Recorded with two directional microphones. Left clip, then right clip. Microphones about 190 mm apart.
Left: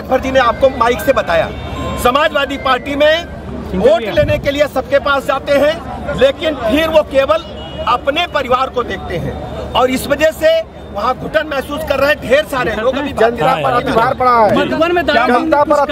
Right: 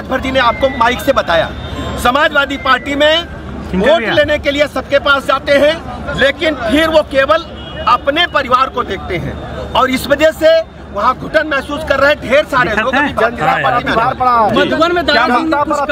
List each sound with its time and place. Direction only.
0.1 s speech: 5° left (ahead or behind)
13.4 s speech: 25° left (ahead or behind)
14.0 s speech: 40° left (ahead or behind)
14.7 s speech: 50° right (ahead or behind)
15.5 s speech: 35° left (ahead or behind)